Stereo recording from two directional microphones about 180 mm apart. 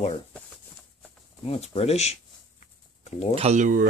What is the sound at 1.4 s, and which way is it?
Speech, 35° left (ahead or behind).